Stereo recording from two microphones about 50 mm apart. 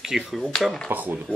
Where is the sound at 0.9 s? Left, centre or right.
Right.